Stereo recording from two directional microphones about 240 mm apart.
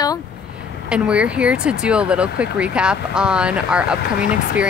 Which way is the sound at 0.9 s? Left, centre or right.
Centre.